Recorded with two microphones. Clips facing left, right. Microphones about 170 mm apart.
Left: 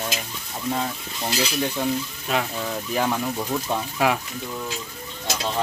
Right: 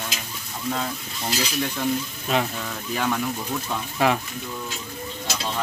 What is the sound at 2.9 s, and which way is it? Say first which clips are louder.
Speech: left 1 dB; 20° left (ahead or behind).